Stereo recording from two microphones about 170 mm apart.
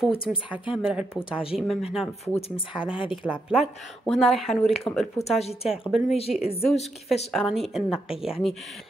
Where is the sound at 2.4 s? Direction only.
35° left (ahead or behind).